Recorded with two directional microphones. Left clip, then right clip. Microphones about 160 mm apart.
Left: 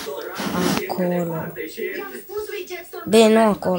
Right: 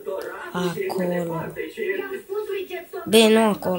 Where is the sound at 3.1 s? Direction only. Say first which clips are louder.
Left 2 dB; 30° left (ahead or behind).